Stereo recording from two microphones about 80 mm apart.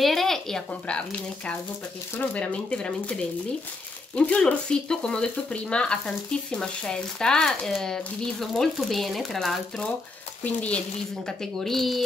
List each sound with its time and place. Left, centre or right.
0.0 s a sound: centre
2.1 s speech: centre
10.4 s speech: centre
11.2 s speech: centre